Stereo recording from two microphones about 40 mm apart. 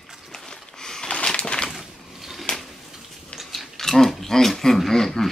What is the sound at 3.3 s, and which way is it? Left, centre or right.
Chewing, centre.